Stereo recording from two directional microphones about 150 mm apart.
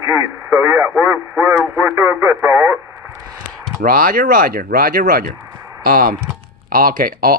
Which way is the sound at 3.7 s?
80° right.